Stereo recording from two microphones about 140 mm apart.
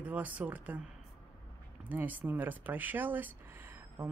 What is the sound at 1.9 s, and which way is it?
Speech, 10° right (ahead or behind).